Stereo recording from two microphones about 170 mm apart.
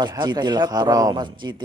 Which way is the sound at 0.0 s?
25° right (ahead or behind).